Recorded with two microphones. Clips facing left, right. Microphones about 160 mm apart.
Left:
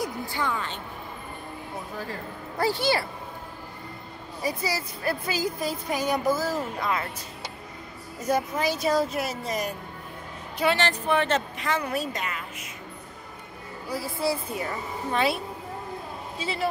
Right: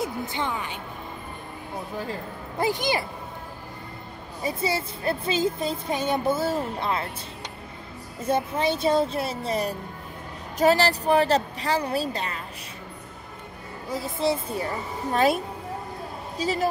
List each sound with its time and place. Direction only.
0.0 s a woman's voice: 20° right (ahead or behind)
2.6 s speech: 15° right (ahead or behind)
4.4 s speech: 25° right (ahead or behind)
8.2 s a woman's voice: 30° right (ahead or behind)
13.8 s speech: 25° right (ahead or behind)
15.1 s a woman's voice: 45° right (ahead or behind)